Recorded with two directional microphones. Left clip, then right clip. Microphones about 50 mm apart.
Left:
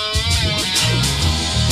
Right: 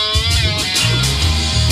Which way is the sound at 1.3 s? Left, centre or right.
Centre.